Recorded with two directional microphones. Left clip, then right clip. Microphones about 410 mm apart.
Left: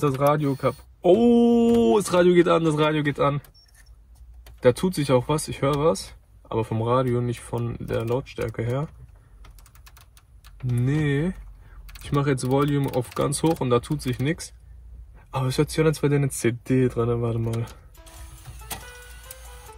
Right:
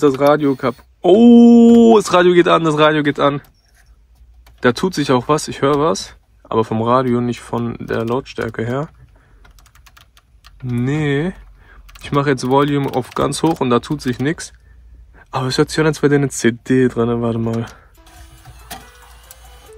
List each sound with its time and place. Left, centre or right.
0.3 s speech: right
4.6 s speech: centre
10.8 s speech: centre
18.6 s music: centre